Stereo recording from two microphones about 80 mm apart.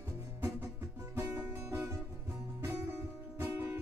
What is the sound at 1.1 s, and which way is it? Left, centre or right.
Music, right.